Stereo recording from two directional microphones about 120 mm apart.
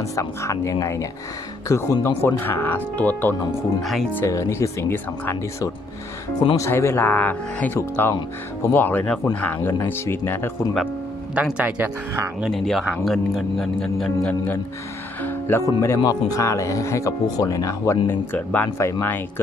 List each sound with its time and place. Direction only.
0.1 s speech: 25° left (ahead or behind)
3.8 s speech: centre (ahead or behind)
4.3 s speech: 25° left (ahead or behind)
11.3 s speech: 10° right (ahead or behind)
12.4 s speech: centre (ahead or behind)
15.2 s speech: 20° left (ahead or behind)
18.0 s speech: 15° left (ahead or behind)